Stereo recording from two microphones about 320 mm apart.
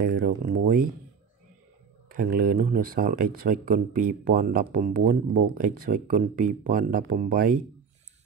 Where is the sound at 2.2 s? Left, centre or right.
Right.